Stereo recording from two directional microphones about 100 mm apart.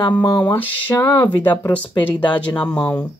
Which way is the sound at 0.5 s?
20° left (ahead or behind).